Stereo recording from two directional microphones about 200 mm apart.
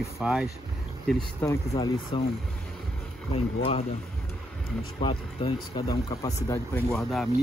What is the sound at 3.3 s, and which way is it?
Speech, 30° left (ahead or behind).